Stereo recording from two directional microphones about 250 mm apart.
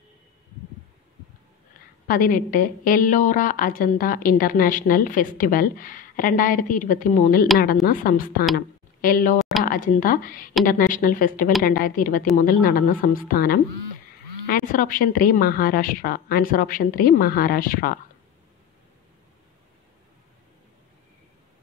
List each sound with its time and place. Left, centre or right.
2.0 s a woman's voice: left